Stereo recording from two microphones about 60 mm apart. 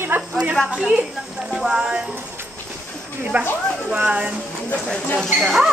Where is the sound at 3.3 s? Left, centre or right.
Right.